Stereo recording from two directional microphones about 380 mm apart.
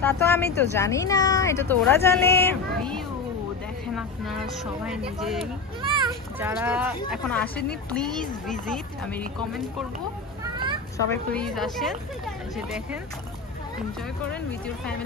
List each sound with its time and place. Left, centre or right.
0.0 s speech: centre
10.4 s children playing: centre
11.1 s speech: centre